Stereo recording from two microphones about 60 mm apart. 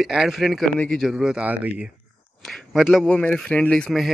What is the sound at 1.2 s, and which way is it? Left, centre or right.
Speech, right.